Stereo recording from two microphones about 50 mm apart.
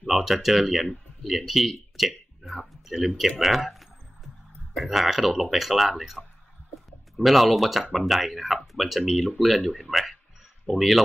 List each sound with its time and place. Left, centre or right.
0.0 s speech: centre
7.2 s speech: centre